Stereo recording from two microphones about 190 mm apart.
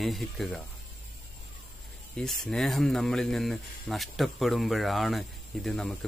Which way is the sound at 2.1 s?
5° left (ahead or behind).